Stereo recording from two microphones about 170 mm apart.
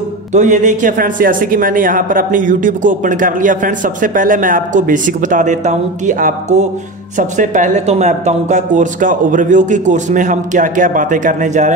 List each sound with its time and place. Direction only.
0.3 s a man's voice: 45° right (ahead or behind)